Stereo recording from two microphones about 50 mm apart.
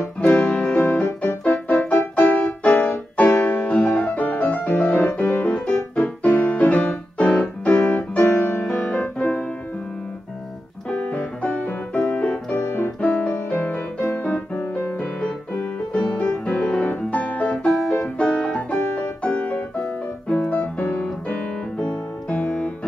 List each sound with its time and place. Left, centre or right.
0.2 s music: left
8.3 s music: left
10.9 s piano: left
12.0 s music: left
12.5 s keyboard: left
13.0 s music: left
14.8 s music: left
15.9 s music: left
22.3 s music: left